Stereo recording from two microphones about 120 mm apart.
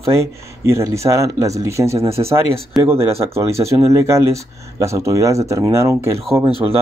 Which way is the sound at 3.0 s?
55° right (ahead or behind).